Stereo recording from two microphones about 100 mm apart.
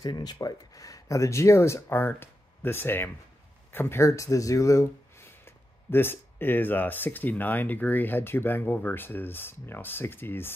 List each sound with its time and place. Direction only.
0.0 s speech: 40° left (ahead or behind); by 10.5 s 20° left (ahead or behind)